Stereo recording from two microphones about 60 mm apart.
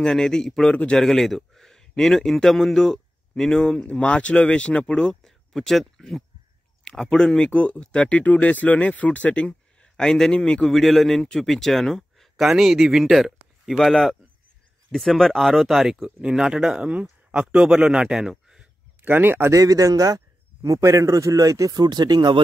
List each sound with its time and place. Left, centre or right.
0.0 s speech: centre
0.7 s a man's voice: centre
0.9 s a man's voice: centre
10.7 s a man's voice: centre
19.0 s speech: right
19.5 s speech: right
20.6 s speech: right